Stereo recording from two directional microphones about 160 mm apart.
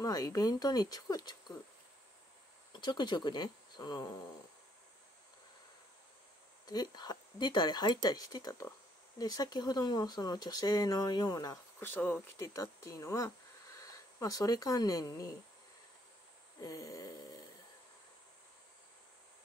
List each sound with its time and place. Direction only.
0.0 s speech: 25° left (ahead or behind)
2.7 s speech: 25° left (ahead or behind)
6.6 s speech: 25° left (ahead or behind)
16.6 s a sound: 20° left (ahead or behind)